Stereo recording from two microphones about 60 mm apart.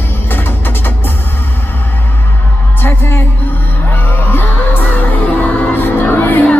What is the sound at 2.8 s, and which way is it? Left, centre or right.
Music, left.